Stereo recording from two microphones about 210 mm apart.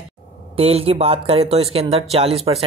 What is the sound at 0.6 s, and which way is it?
Speech, 30° right (ahead or behind).